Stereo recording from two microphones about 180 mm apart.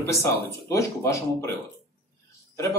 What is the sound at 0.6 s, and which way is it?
Speech, 15° left (ahead or behind).